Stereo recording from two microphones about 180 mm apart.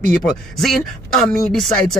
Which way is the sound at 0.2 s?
Centre (ahead or behind).